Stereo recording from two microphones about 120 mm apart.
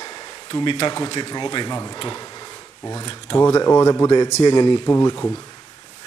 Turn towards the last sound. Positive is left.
turn(degrees=20)  # may be behind; listen again after turning